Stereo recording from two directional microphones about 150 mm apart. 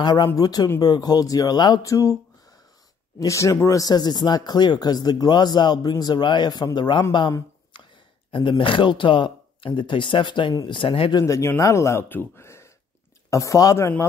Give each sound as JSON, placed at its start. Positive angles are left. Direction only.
{"t": 0.0, "sound": "speech", "side_deg": 30}
{"t": 3.2, "sound": "speech", "side_deg": 20}